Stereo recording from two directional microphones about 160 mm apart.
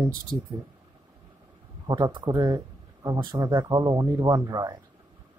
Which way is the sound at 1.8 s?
30° right (ahead or behind).